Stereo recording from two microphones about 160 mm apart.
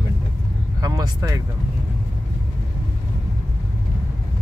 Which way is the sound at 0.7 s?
20° right (ahead or behind).